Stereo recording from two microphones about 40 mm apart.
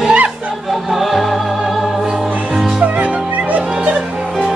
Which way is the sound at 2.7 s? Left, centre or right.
Right.